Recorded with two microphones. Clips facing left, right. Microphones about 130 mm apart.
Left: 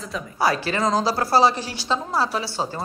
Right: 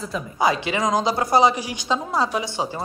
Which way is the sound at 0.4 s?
20° right (ahead or behind).